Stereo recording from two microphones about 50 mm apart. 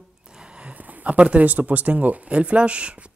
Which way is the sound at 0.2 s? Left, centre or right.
Centre.